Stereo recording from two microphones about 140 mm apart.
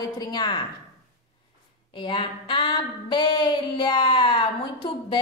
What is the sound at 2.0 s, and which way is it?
Female singing, 35° left (ahead or behind).